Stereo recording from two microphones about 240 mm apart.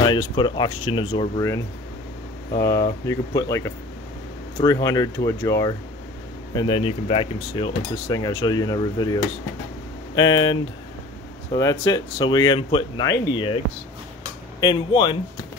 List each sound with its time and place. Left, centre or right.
0.0 s speech: centre
11.8 s speech: centre
14.6 s speech: centre